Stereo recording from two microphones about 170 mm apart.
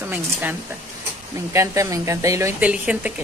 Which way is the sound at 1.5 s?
15° right (ahead or behind).